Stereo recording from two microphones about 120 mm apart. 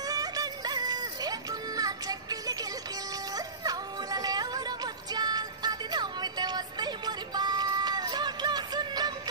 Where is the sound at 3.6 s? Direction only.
30° right (ahead or behind).